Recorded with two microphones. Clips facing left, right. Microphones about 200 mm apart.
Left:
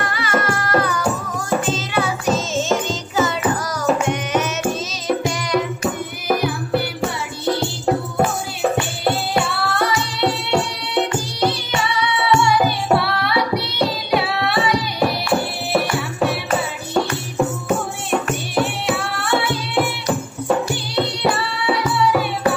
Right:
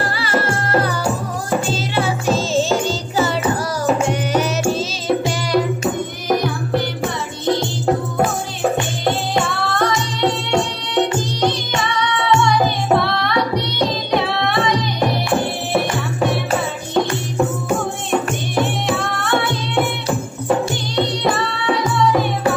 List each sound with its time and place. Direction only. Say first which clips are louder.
0.0 s music: right 1 dB; 30° right (ahead or behind)
6.2 s music: even; 10° left (ahead or behind)
9.0 s music: even; 10° left (ahead or behind)
18.5 s music: right 1 dB; 5° left (ahead or behind)
20.9 s music: right 1 dB; 10° left (ahead or behind)